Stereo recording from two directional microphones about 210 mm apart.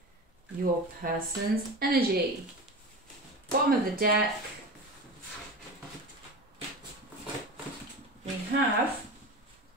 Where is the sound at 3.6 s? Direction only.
45° right (ahead or behind).